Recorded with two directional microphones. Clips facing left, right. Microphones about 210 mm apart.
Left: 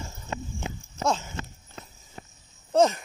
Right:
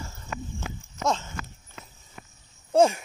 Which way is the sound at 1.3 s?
35° left (ahead or behind).